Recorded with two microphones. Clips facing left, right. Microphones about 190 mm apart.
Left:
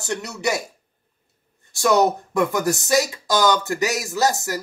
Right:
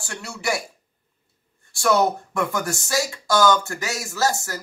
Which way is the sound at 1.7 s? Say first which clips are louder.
Left 2 dB; 20° left (ahead or behind).